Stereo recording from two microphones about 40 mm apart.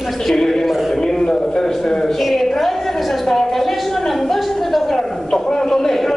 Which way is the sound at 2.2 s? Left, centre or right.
Centre.